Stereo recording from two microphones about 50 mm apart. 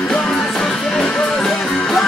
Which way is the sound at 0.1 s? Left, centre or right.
Centre.